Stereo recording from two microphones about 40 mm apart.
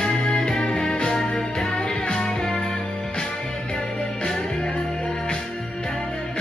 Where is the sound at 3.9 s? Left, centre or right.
Centre.